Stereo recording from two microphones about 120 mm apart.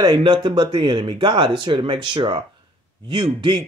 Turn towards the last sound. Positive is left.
turn(degrees=-40)  # may be behind; listen again after turning